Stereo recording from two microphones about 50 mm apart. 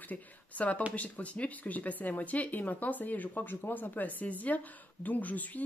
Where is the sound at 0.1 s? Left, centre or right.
Left.